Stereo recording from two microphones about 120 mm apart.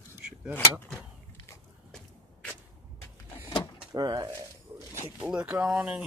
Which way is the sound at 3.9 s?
35° right (ahead or behind).